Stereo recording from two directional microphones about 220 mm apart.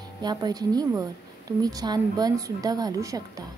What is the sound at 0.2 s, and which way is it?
A woman's voice, 20° right (ahead or behind).